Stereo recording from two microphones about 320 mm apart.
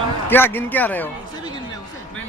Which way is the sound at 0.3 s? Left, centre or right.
Centre.